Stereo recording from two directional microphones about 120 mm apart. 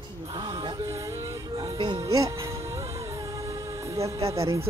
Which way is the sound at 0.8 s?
25° right (ahead or behind).